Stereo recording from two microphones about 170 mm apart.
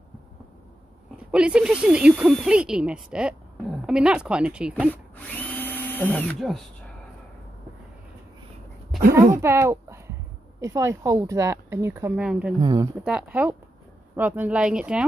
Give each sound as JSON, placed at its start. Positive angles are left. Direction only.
{"t": 1.1, "sound": "speech", "side_deg": -5}
{"t": 5.1, "sound": "drill", "side_deg": 10}
{"t": 9.3, "sound": "speech", "side_deg": -15}
{"t": 12.5, "sound": "speech", "side_deg": -25}
{"t": 13.0, "sound": "speech", "side_deg": -5}